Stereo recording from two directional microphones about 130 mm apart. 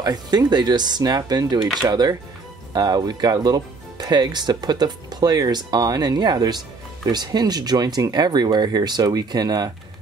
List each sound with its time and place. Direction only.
0.0 s speech: 30° right (ahead or behind)